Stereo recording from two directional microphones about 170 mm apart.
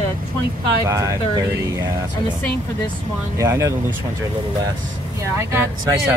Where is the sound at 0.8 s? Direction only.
20° right (ahead or behind).